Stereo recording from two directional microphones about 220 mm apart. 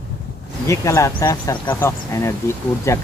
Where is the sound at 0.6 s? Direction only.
15° left (ahead or behind).